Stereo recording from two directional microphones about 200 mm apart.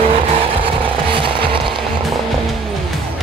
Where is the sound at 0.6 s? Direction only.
25° right (ahead or behind).